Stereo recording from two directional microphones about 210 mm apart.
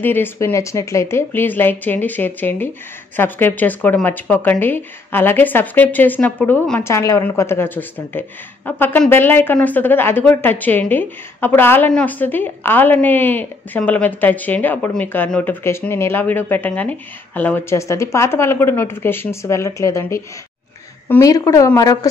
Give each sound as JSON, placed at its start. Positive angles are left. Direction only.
{"t": 0.0, "sound": "speech", "side_deg": 10}